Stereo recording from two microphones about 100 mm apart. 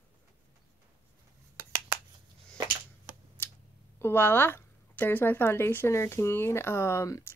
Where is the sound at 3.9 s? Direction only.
20° left (ahead or behind).